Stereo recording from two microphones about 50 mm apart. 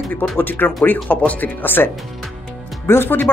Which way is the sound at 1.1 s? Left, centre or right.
Left.